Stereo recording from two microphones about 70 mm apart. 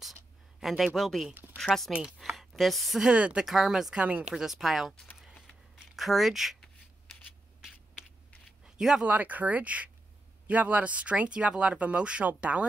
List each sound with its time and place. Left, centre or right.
0.6 s speech: centre
1.9 s speech: centre
2.1 s speech: centre
3.1 s speech: centre
3.4 s speech: centre
5.9 s speech: centre
8.6 s a sound: centre
9.0 s speech: right